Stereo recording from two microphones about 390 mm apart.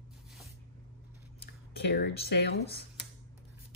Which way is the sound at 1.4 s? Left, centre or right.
Left.